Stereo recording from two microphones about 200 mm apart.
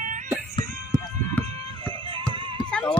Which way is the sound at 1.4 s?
30° right (ahead or behind).